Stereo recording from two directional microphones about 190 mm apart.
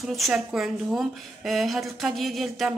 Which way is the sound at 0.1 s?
Centre (ahead or behind).